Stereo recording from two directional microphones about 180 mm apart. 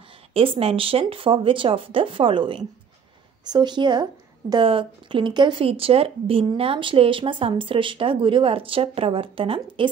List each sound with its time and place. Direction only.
0.3 s a woman's voice: 30° right (ahead or behind)